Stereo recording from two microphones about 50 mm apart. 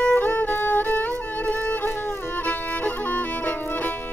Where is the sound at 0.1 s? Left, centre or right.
Left.